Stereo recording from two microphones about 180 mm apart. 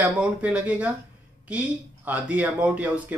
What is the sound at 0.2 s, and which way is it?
Speech, 5° right (ahead or behind).